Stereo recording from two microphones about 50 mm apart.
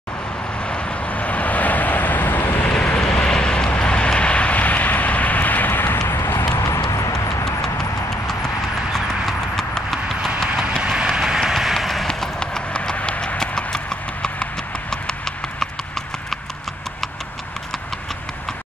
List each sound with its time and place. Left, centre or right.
0.7 s vehicle: left
2.7 s vehicle: left
6.5 s clip-clop: left
7.6 s clip-clop: centre
10.8 s train: centre
12.1 s clip-clop: centre